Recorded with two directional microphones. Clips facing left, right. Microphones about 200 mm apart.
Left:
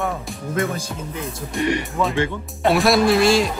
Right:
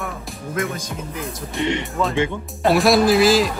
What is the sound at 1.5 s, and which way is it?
Speech, 25° right (ahead or behind).